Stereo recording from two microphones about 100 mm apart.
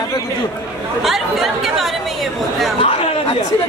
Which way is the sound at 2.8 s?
75° left (ahead or behind).